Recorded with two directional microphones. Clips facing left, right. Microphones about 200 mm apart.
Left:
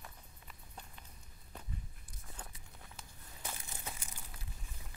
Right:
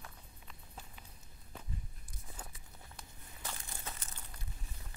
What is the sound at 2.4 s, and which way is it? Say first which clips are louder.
Walk: even; 5° right (ahead or behind).